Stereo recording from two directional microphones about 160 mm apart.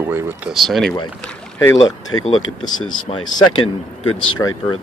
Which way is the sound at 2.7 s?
50° left (ahead or behind).